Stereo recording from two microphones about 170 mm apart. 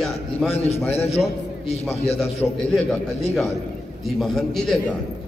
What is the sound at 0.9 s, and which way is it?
Speech, 40° left (ahead or behind).